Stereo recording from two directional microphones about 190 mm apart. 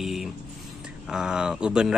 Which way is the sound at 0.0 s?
Centre (ahead or behind).